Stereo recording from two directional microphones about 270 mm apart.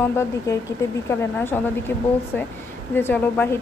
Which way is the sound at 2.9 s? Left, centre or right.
Centre.